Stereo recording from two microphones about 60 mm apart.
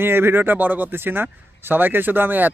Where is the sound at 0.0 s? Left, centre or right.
Right.